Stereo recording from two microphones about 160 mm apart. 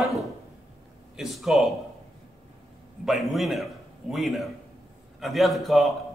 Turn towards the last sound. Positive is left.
turn(degrees=0)  # may be behind; listen again after turning